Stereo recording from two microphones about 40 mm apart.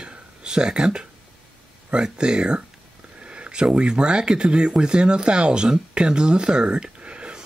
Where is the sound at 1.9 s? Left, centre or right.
Right.